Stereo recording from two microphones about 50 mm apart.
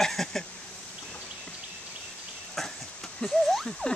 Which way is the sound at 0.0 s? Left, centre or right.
Centre.